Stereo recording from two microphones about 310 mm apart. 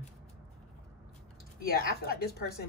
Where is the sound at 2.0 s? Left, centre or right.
Left.